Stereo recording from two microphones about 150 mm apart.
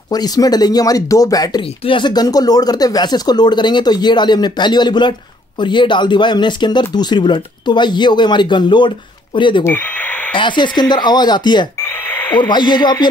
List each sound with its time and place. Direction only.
0.1 s speech: 25° left (ahead or behind)
11.8 s speech: 15° left (ahead or behind)
12.4 s speech: 30° left (ahead or behind)